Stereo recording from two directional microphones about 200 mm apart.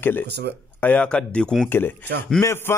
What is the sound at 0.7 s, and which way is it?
A man's voice, 5° left (ahead or behind).